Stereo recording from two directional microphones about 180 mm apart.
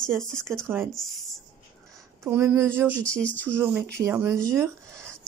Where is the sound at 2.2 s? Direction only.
10° right (ahead or behind).